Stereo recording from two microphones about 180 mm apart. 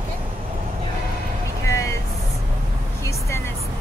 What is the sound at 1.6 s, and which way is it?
Vehicle, 15° left (ahead or behind).